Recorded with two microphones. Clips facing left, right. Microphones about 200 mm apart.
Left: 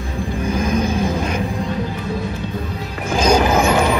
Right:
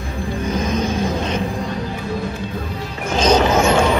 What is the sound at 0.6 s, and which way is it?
Vehicle, 10° left (ahead or behind).